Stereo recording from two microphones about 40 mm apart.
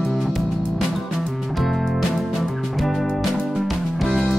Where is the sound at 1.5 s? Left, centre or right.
Centre.